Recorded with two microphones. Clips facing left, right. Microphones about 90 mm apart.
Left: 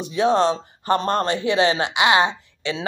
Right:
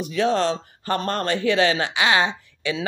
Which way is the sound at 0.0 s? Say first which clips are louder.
Left 3 dB; 20° left (ahead or behind).